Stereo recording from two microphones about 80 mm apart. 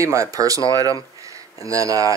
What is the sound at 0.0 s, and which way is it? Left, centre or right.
Speech, right.